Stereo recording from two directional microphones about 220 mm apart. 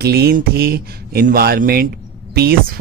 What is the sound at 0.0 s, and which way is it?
Speech, 45° right (ahead or behind).